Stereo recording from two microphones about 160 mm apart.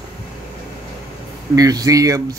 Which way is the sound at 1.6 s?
20° right (ahead or behind).